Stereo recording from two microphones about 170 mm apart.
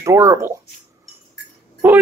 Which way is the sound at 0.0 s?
15° right (ahead or behind).